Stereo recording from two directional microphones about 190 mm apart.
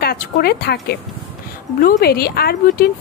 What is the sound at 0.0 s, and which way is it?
A woman's voice, 55° left (ahead or behind).